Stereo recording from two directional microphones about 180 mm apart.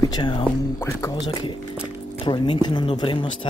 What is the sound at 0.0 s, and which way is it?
Speech, 25° left (ahead or behind).